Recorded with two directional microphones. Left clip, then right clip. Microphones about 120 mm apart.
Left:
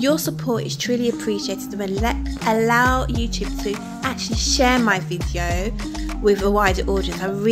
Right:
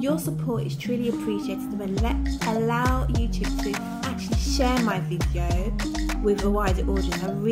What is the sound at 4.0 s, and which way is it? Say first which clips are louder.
Music: left 7 dB; 15° left (ahead or behind).